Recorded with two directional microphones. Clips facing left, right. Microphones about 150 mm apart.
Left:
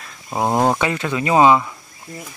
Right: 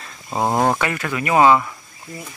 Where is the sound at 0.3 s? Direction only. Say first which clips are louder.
Left 1 dB; 15° left (ahead or behind).